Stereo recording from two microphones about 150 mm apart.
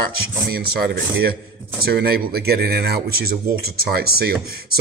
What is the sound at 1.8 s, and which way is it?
Speech, 90° right.